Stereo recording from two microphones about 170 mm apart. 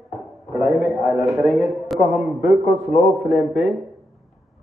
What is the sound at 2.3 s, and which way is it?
Speech, 55° left (ahead or behind).